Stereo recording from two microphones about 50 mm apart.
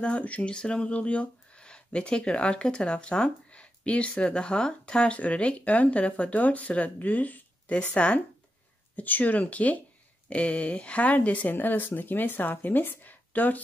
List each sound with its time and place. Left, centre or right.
0.0 s speech: left